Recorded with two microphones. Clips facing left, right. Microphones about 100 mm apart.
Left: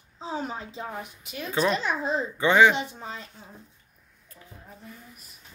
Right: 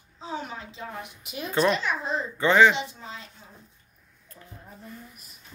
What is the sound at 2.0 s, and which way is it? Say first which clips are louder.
Speech: left 1 dB; 10° left (ahead or behind).